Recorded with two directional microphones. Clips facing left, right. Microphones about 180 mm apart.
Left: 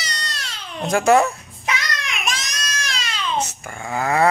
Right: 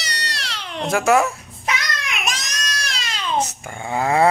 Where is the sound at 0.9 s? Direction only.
5° right (ahead or behind).